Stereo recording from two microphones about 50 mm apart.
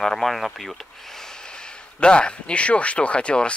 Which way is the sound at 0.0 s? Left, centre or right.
Centre.